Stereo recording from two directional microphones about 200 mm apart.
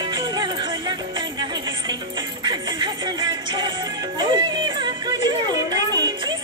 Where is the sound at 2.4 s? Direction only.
20° right (ahead or behind).